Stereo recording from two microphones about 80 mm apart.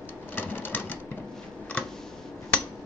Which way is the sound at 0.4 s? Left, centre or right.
Left.